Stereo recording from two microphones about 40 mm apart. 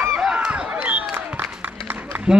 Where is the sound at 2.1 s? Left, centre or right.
Right.